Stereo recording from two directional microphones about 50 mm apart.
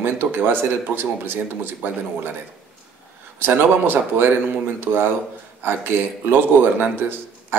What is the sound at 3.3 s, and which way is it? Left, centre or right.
Speech, right.